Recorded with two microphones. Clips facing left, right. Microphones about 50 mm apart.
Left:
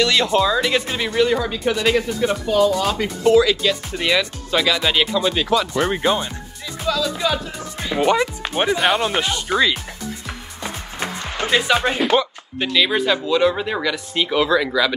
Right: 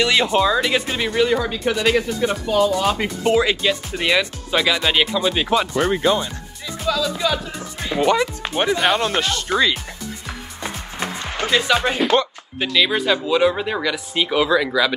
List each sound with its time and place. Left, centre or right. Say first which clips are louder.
0.0 s speech: even; centre
3.3 s speech: left 3 dB; right
3.6 s speech: even; centre
5.9 s speech: right 1 dB; centre
6.9 s speech: even; centre
11.0 s music: even; centre
11.4 s speech: even; centre
11.8 s speech: even; centre